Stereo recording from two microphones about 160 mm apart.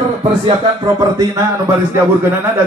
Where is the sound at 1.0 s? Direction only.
20° right (ahead or behind).